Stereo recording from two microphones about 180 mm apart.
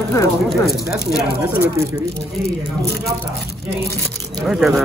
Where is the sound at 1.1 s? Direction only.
10° right (ahead or behind).